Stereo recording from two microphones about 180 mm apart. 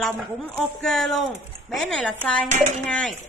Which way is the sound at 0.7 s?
Centre (ahead or behind).